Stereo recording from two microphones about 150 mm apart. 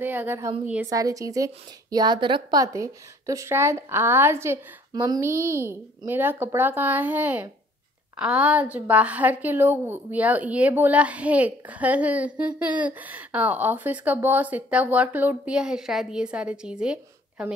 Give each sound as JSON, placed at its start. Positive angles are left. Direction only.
{"t": 0.0, "sound": "a woman's voice", "side_deg": -15}